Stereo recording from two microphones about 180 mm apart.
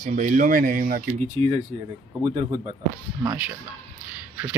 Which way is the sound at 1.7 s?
35° right (ahead or behind).